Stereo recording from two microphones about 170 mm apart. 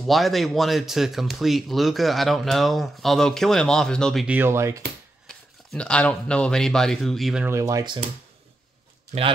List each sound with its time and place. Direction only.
0.0 s speech: centre (ahead or behind)
4.4 s speech: 15° right (ahead or behind)
5.2 s speech: centre (ahead or behind)
7.4 s speech: 15° right (ahead or behind)